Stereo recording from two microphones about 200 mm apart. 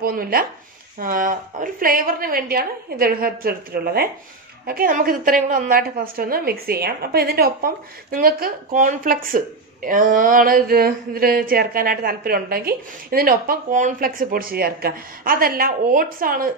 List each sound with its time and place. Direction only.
0.0 s a woman's voice: 45° right (ahead or behind)